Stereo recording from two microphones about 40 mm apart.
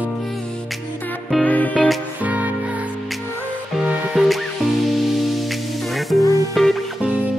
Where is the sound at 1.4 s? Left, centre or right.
Left.